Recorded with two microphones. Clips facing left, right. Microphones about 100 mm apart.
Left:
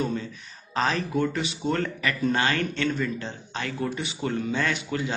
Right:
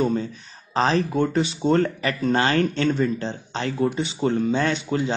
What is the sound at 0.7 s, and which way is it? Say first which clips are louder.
Speech: right 5 dB; 30° right (ahead or behind).